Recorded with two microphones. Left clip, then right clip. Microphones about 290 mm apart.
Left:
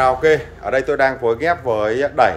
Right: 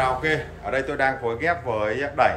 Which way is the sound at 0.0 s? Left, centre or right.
Centre.